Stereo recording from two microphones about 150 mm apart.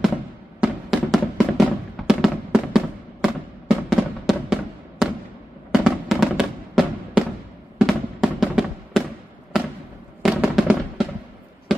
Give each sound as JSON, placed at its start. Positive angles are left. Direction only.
{"t": 0.6, "sound": "music", "side_deg": 0}
{"t": 5.7, "sound": "fireworks", "side_deg": -5}
{"t": 7.8, "sound": "music", "side_deg": 0}
{"t": 10.2, "sound": "fireworks", "side_deg": -5}